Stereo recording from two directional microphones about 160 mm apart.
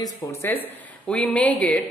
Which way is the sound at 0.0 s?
15° left (ahead or behind).